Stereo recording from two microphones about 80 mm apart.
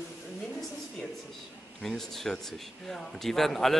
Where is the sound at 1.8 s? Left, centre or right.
Centre.